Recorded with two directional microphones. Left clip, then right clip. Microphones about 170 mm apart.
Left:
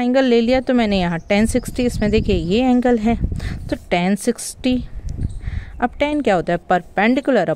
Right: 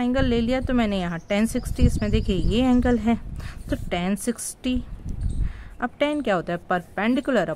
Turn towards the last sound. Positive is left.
turn(degrees=40)  # may be behind; listen again after turning